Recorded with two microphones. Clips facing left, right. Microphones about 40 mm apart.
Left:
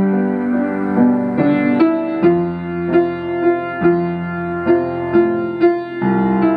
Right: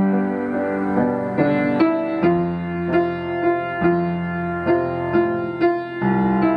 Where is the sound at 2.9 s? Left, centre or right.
Centre.